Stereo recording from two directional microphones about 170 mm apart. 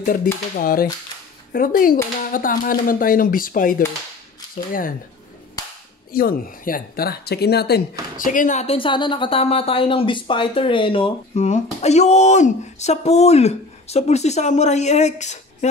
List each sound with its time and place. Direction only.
0.0 s speech: 55° left (ahead or behind)
6.1 s speech: 60° left (ahead or behind)
8.2 s speech: 50° left (ahead or behind)